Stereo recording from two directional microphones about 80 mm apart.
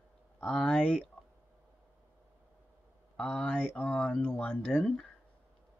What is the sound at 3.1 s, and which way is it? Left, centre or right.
Speech, centre.